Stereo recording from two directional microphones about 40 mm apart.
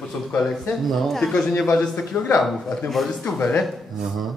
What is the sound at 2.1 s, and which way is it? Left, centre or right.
Speech, left.